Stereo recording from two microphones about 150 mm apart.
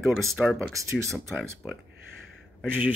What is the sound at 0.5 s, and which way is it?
Speech, 20° right (ahead or behind).